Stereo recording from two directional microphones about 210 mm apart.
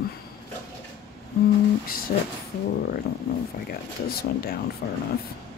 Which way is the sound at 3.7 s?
45° left (ahead or behind).